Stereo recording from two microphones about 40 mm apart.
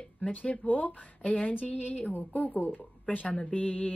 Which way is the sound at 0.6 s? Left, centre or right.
Left.